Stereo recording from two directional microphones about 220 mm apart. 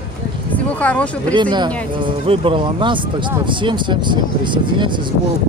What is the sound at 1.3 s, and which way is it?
Speech, 20° right (ahead or behind).